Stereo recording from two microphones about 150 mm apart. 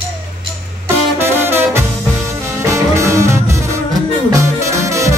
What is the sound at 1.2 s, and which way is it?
Music, 15° right (ahead or behind).